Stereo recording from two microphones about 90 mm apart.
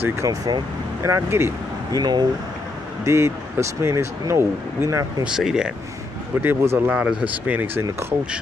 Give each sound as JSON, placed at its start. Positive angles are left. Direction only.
{"t": 0.0, "sound": "speech", "side_deg": -35}
{"t": 1.9, "sound": "speech", "side_deg": -50}
{"t": 3.1, "sound": "speech", "side_deg": -30}
{"t": 5.2, "sound": "speech", "side_deg": -5}
{"t": 6.4, "sound": "speech", "side_deg": -30}
{"t": 6.9, "sound": "speech", "side_deg": -10}